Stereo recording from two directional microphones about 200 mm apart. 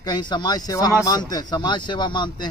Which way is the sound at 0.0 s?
20° left (ahead or behind).